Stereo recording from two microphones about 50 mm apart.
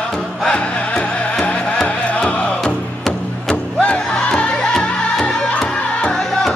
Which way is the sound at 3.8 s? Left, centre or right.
Left.